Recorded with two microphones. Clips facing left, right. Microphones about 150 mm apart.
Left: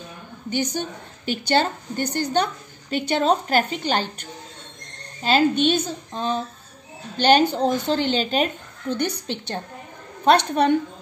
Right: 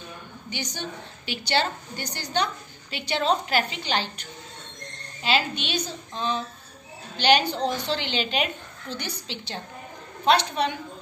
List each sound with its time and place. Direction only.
0.5 s a woman's voice: 50° left (ahead or behind)